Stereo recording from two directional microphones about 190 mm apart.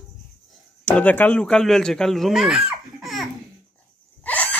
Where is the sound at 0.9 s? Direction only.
10° left (ahead or behind).